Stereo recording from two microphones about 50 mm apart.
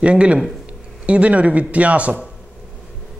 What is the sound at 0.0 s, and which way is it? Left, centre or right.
Speech, right.